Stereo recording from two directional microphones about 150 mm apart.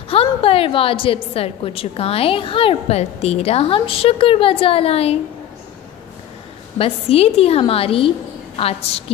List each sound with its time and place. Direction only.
0.1 s a woman's voice: 40° left (ahead or behind)
6.8 s a woman's voice: 40° left (ahead or behind)